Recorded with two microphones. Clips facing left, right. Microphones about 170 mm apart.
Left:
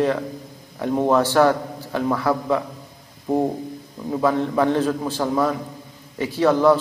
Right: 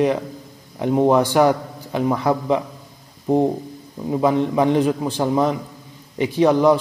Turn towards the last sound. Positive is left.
turn(degrees=-15)  # may be behind; listen again after turning